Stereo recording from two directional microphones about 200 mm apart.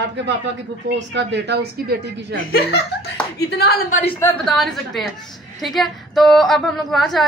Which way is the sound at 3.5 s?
50° left (ahead or behind).